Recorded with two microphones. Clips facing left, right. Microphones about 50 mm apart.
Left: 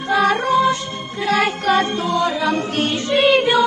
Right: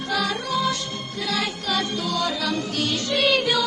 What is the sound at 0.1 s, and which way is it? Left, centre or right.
Music, left.